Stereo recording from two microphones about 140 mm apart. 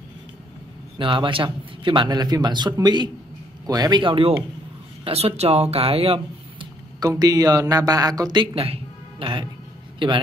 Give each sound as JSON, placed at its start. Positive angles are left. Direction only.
{"t": 0.9, "sound": "a man's voice", "side_deg": -40}